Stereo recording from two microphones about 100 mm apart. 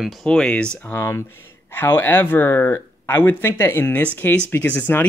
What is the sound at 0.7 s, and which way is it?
Speech, 20° left (ahead or behind).